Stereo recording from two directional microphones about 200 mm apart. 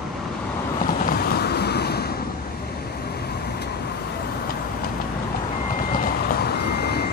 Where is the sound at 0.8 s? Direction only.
45° left (ahead or behind).